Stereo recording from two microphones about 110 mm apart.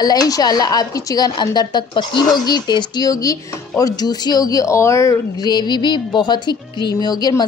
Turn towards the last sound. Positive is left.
turn(degrees=40)  # may be behind; listen again after turning